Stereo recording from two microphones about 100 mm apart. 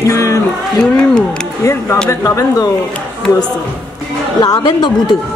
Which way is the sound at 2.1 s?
35° left (ahead or behind).